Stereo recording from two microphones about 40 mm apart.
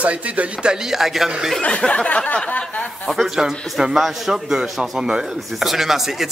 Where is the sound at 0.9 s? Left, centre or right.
Centre.